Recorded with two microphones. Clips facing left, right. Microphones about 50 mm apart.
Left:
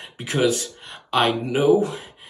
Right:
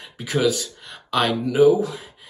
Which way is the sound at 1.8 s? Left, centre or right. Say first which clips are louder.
Left 2 dB; left.